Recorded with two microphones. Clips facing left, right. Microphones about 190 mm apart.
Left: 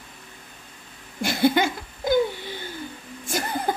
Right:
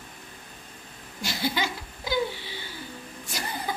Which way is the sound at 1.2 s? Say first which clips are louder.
Left 9 dB; 55° left (ahead or behind).